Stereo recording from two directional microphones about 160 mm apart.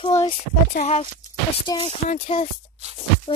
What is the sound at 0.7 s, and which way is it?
Speech, 45° left (ahead or behind).